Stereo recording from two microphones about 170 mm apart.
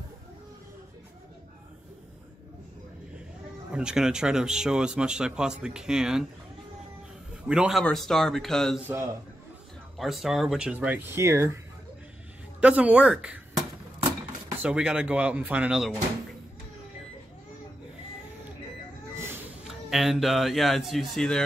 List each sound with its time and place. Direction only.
3.7 s speech: 5° right (ahead or behind)
7.4 s speech: 5° right (ahead or behind)
8.8 s speech: 15° right (ahead or behind)
9.9 s speech: centre (ahead or behind)
14.6 s speech: 5° right (ahead or behind)
19.1 s a sound: 15° right (ahead or behind)
19.7 s speech: centre (ahead or behind)